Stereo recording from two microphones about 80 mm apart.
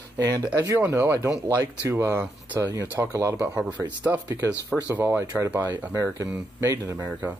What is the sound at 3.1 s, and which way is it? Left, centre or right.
Speech, right.